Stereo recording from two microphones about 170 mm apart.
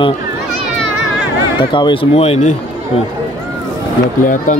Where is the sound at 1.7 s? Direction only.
30° left (ahead or behind).